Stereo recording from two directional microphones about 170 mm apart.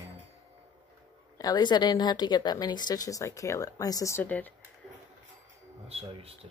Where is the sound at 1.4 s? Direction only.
25° left (ahead or behind).